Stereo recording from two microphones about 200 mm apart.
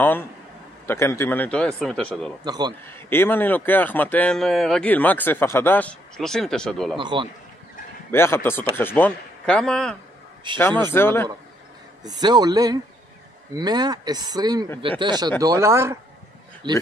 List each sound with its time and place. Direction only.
0.8 s a man's voice: 15° left (ahead or behind)
2.4 s speech: 20° right (ahead or behind)
2.9 s speech: 10° left (ahead or behind)
7.0 s speech: 25° right (ahead or behind)
8.1 s speech: 10° left (ahead or behind)
12.0 s speech: 20° right (ahead or behind)